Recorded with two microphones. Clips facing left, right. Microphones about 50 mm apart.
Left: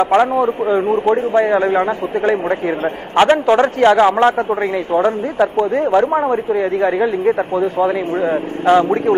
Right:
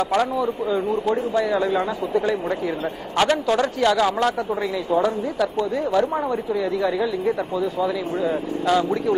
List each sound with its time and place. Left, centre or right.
0.0 s speech: left